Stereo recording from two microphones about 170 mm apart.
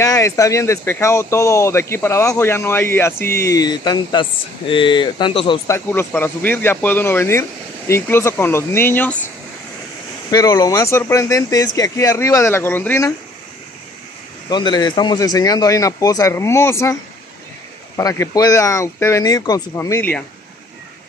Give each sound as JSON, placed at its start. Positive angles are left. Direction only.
{"t": 0.0, "sound": "speech", "side_deg": 20}
{"t": 5.7, "sound": "speech", "side_deg": 10}
{"t": 10.3, "sound": "speech", "side_deg": 20}
{"t": 14.5, "sound": "speech", "side_deg": 25}
{"t": 17.9, "sound": "speech", "side_deg": 20}